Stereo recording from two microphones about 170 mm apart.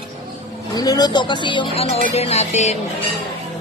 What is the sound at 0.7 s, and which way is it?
Speech, 25° left (ahead or behind).